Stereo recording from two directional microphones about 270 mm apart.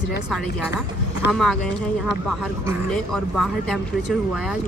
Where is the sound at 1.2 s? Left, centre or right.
Left.